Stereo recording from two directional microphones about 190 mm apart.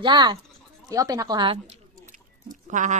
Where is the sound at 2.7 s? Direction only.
40° right (ahead or behind).